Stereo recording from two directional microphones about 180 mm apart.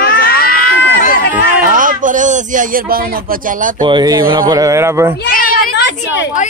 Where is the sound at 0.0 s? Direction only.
55° left (ahead or behind).